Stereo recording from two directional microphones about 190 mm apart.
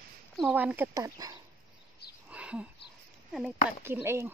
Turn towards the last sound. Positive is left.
turn(degrees=-15)  # may be behind; listen again after turning